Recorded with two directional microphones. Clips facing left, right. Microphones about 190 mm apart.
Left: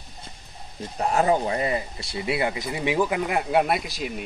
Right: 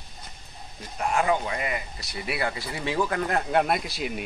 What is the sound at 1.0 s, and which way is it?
Speech, 35° left (ahead or behind).